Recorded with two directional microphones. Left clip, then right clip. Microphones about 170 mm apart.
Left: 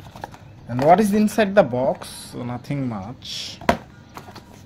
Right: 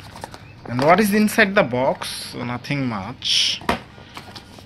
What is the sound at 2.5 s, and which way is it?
Speech, 5° left (ahead or behind).